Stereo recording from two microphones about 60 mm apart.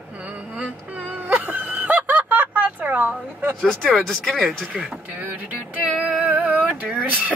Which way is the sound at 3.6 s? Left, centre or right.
Centre.